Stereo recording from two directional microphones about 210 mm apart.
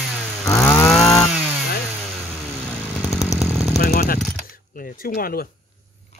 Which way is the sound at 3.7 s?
50° left (ahead or behind).